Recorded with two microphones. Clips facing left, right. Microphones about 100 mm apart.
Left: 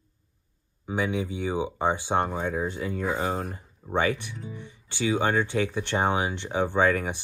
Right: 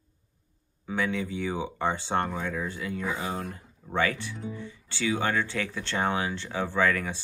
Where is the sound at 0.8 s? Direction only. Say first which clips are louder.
Left 2 dB; 15° left (ahead or behind).